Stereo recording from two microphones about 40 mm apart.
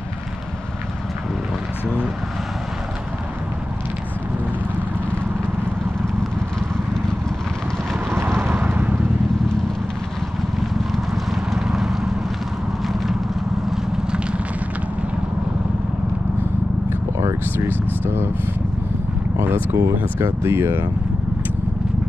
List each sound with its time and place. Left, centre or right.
8.1 s vehicle: right
8.7 s vehicle: right
11.7 s vehicle: centre
17.6 s vehicle: right
19.4 s a sound: right
20.2 s speech: right